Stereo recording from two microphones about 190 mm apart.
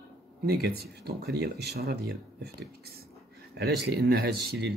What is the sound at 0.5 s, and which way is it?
Speech, 55° right (ahead or behind).